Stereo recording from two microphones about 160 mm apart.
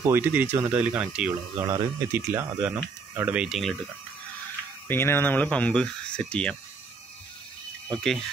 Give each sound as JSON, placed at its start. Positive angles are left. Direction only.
{"t": 0.0, "sound": "speech", "side_deg": -15}
{"t": 4.8, "sound": "speech", "side_deg": 15}
{"t": 7.9, "sound": "speech", "side_deg": 0}